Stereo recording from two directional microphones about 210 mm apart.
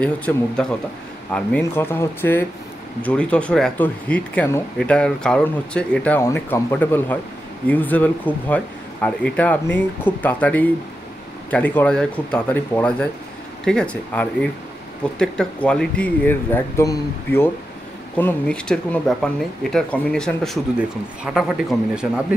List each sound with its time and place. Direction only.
0.0 s speech: 5° left (ahead or behind)